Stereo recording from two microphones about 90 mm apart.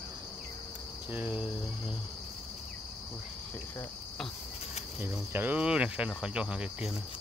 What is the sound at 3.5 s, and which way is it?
Cricket, 25° left (ahead or behind).